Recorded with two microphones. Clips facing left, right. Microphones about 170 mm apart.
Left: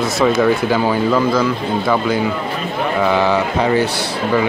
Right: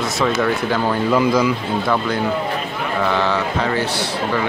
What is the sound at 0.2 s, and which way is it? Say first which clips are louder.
Speech: left 5 dB; 5° left (ahead or behind).